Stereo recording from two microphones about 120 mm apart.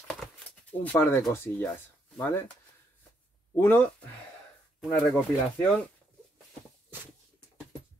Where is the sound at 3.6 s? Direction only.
20° left (ahead or behind).